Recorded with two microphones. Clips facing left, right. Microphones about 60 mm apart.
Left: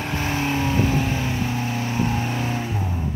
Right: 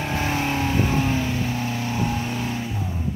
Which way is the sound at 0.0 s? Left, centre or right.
Centre.